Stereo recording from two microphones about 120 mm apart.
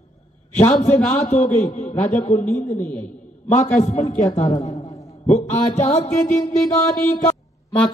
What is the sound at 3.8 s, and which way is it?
Speech, 70° left (ahead or behind).